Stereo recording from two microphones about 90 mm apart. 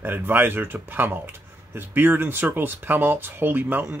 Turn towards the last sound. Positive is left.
turn(degrees=-25)  # may be behind; listen again after turning